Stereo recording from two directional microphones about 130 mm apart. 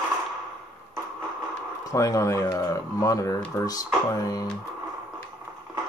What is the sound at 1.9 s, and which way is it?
Speech, 25° left (ahead or behind).